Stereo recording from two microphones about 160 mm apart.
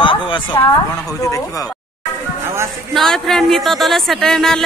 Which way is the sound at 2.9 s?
Centre (ahead or behind).